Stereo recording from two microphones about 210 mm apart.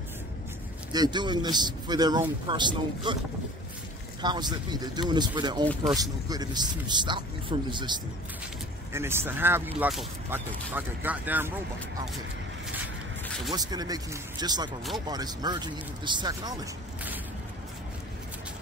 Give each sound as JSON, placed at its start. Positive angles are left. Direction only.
{"t": 0.9, "sound": "speech", "side_deg": -20}
{"t": 4.2, "sound": "speech", "side_deg": -20}
{"t": 8.9, "sound": "speech", "side_deg": -10}
{"t": 13.5, "sound": "speech", "side_deg": -20}